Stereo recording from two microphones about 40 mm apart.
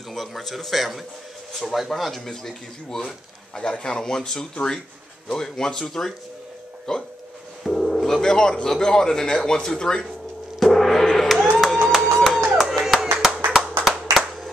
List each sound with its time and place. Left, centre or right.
0.1 s speech: centre
3.5 s speech: left
7.6 s dial tone: centre
8.6 s speech: centre
10.6 s gong: centre
11.1 s a sound: centre
11.6 s music: centre
12.5 s clapping: centre